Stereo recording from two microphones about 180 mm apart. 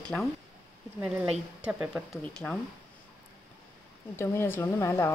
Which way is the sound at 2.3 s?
10° left (ahead or behind).